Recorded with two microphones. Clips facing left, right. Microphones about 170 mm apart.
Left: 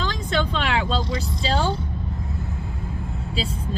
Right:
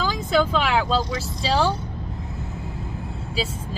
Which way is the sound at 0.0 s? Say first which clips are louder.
Right 4 dB; 5° right (ahead or behind).